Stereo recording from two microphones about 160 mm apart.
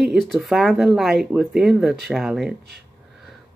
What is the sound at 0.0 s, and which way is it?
Speech, centre (ahead or behind).